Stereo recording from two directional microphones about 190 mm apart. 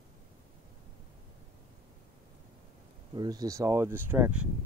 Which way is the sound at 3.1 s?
20° right (ahead or behind).